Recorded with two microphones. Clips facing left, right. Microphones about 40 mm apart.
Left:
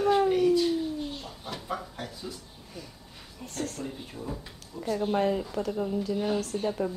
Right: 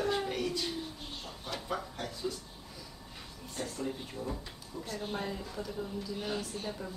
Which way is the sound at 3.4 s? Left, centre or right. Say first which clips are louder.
Left 9 dB; left.